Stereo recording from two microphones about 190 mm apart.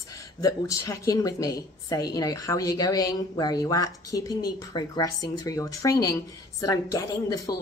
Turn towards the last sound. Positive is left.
turn(degrees=20)  # may be behind; listen again after turning